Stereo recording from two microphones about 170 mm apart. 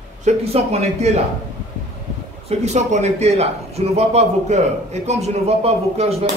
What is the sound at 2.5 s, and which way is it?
A man's voice, 40° right (ahead or behind).